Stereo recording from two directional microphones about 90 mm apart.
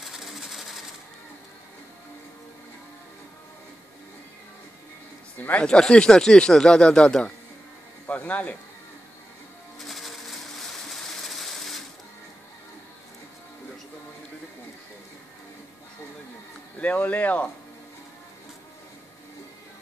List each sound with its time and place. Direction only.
0.0 s sewing machine: centre (ahead or behind)
5.4 s speech: 15° left (ahead or behind)
9.8 s music: centre (ahead or behind)
10.9 s sewing machine: centre (ahead or behind)
16.8 s speech: 15° left (ahead or behind)